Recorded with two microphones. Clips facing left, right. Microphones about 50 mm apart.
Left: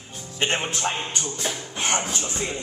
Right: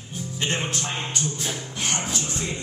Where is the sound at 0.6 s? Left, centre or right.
Left.